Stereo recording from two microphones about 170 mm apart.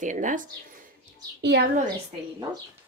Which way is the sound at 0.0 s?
50° right (ahead or behind).